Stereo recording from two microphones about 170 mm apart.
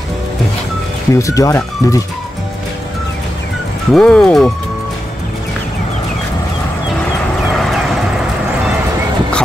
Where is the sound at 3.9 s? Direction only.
5° left (ahead or behind).